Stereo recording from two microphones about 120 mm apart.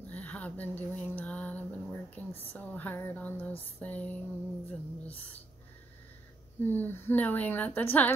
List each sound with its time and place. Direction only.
0.0 s a woman's voice: 15° left (ahead or behind)
6.6 s a woman's voice: 15° left (ahead or behind)